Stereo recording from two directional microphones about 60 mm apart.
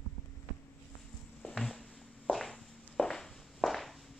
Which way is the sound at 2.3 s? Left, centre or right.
Centre.